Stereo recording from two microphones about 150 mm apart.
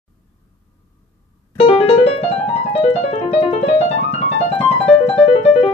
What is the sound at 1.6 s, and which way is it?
Piano, 40° left (ahead or behind).